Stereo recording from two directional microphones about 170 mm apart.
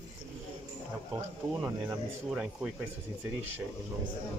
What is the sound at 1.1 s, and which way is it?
Speech, 15° right (ahead or behind).